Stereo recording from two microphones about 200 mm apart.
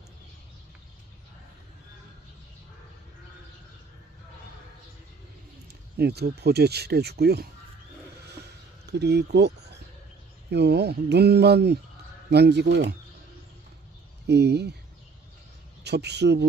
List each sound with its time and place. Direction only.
5.9 s speech: 55° right (ahead or behind)
8.9 s speech: 55° right (ahead or behind)
14.2 s speech: 55° right (ahead or behind)
15.8 s speech: 55° right (ahead or behind)